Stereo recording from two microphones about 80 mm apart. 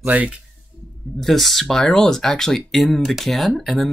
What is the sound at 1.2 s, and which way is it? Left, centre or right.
Speech, centre.